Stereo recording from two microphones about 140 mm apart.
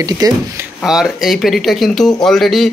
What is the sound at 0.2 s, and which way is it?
Speech, 30° right (ahead or behind).